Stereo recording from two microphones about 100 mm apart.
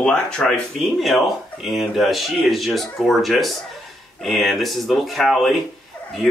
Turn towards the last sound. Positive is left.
turn(degrees=0)  # may be behind; listen again after turning